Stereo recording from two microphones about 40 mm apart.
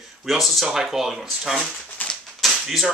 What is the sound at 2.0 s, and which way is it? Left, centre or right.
Typewriter, left.